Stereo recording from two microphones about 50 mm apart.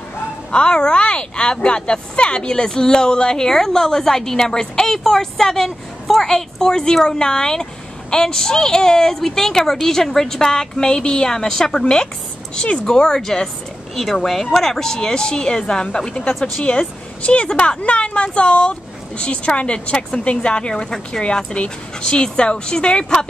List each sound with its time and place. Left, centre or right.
0.5 s speech: centre
17.2 s speech: left